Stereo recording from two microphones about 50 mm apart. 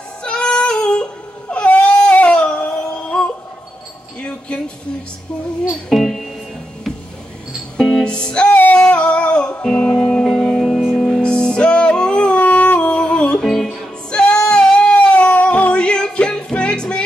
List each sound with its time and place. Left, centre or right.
0.2 s female singing: centre
1.5 s baby cry: left
2.8 s synthetic singing: centre
4.2 s a sound: left
5.6 s music: centre
5.9 s music: centre
7.7 s music: centre
8.5 s female singing: left
8.9 s humming: left
9.7 s music: centre
12.4 s a sound: left
13.4 s music: centre
14.2 s singing: centre